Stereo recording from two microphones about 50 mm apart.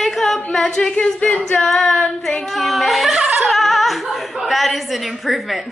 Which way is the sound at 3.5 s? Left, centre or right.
Centre.